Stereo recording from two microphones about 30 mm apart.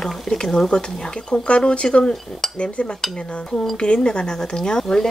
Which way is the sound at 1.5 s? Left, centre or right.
Left.